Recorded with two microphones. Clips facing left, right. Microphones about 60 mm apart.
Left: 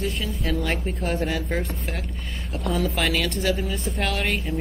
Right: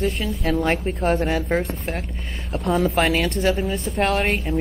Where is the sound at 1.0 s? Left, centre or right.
Right.